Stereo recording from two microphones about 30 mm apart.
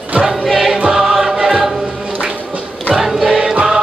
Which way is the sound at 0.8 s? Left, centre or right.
Centre.